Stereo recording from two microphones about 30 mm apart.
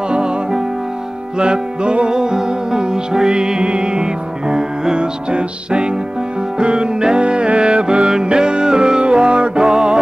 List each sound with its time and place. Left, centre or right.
0.1 s music: right
1.4 s music: right
4.9 s music: right